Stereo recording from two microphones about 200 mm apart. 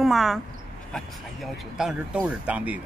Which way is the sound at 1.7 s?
Centre (ahead or behind).